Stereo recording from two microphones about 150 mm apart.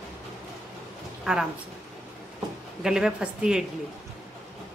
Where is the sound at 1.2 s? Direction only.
5° right (ahead or behind).